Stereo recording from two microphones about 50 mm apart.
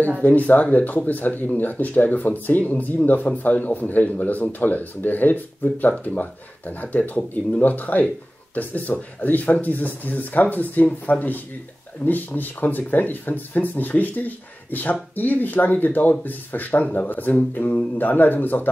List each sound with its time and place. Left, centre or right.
0.2 s speech: left